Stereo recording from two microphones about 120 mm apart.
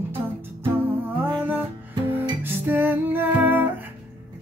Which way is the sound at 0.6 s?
20° right (ahead or behind).